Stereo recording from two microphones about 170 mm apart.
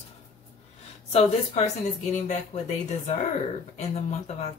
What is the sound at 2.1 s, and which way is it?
Speech, 45° left (ahead or behind).